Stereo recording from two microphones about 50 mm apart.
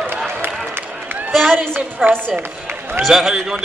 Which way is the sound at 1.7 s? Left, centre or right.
Right.